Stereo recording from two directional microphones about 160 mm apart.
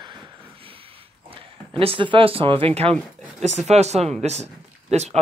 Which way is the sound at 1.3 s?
35° right (ahead or behind).